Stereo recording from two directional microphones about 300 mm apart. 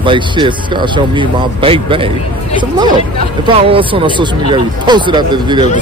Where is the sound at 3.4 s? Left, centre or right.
Centre.